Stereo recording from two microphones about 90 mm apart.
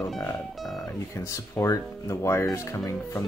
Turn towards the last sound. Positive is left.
turn(degrees=35)  # may be behind; listen again after turning